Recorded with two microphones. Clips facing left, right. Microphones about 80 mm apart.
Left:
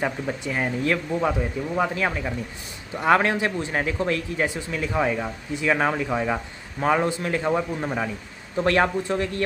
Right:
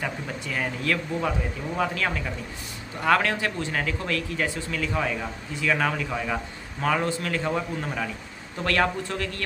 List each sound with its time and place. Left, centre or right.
0.0 s speech: left